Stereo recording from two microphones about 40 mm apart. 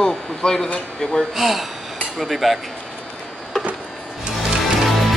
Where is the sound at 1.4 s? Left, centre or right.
Centre.